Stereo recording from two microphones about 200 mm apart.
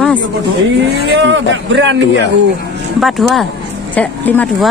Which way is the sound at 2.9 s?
Centre (ahead or behind).